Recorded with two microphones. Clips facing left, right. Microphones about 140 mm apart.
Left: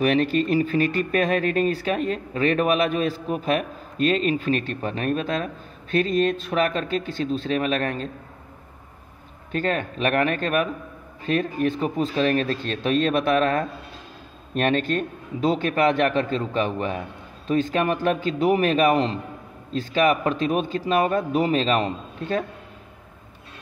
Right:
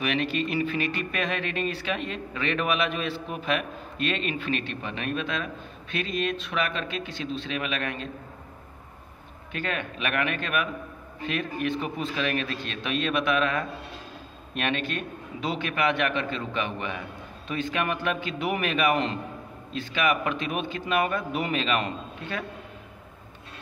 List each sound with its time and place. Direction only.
0.0 s speech: 40° left (ahead or behind)
9.5 s speech: 40° left (ahead or behind)